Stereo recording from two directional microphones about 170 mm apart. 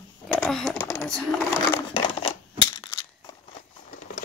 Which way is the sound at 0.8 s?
20° left (ahead or behind).